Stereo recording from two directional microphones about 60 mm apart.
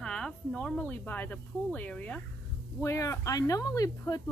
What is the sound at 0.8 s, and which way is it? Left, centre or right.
Speech, left.